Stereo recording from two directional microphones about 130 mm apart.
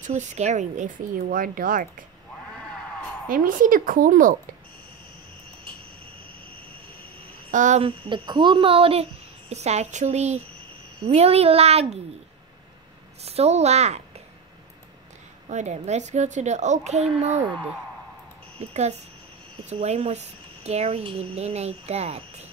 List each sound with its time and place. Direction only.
0.0 s speech: 65° right (ahead or behind); by 1.9 s 90° right
2.5 s a sound: 5° left (ahead or behind)
3.3 s a woman's voice: 90° right
7.5 s speech: 75° right (ahead or behind)
7.8 s cricket: 40° right (ahead or behind)
9.5 s speech: 55° right (ahead or behind)
13.2 s a woman's voice: 55° right (ahead or behind)
15.4 s speech: 65° right (ahead or behind)
18.7 s speech: 60° right (ahead or behind)